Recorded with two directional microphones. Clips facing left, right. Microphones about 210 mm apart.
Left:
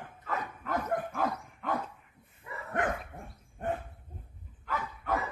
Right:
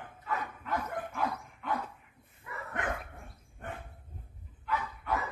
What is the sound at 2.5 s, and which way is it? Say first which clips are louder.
Dog: left 1 dB; 25° left (ahead or behind).